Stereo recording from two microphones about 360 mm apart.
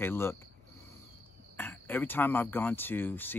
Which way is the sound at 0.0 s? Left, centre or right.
Centre.